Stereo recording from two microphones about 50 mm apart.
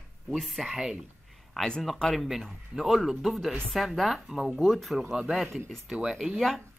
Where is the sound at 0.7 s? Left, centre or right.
Centre.